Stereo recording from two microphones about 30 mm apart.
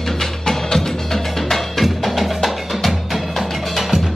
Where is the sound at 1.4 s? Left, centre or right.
Centre.